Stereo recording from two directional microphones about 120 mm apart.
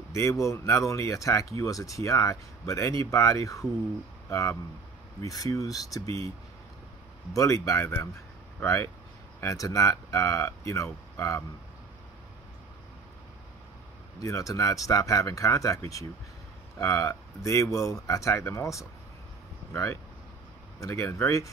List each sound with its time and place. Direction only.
0.1 s speech: 25° left (ahead or behind)
6.0 s speech: 55° right (ahead or behind)
7.3 s speech: 25° left (ahead or behind)
14.2 s speech: 30° left (ahead or behind)